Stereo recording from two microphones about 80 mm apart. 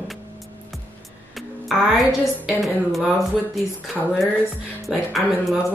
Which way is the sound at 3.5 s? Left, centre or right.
Centre.